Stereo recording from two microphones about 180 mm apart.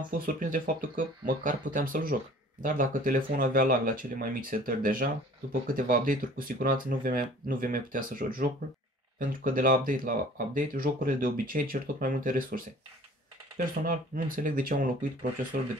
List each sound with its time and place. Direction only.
0.2 s speech: 50° right (ahead or behind)
13.8 s speech: 50° right (ahead or behind)